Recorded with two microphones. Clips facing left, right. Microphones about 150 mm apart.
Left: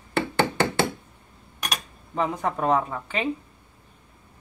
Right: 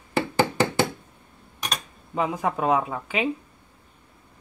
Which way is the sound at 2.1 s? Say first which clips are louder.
Right 1 dB; 5° right (ahead or behind).